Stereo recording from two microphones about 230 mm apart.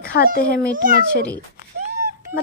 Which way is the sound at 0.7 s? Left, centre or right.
Right.